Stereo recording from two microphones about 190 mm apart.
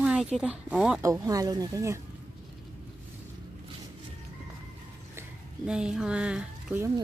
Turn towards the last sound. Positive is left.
turn(degrees=-5)  # may be behind; listen again after turning